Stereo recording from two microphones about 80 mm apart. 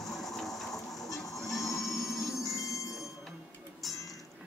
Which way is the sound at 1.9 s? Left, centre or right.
Left.